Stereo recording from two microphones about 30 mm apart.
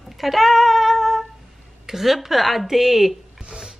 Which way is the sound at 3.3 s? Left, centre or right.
Right.